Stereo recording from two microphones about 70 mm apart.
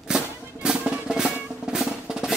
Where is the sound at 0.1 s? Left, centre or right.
Centre.